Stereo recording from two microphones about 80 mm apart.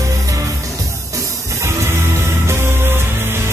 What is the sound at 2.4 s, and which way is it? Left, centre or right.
Music, right.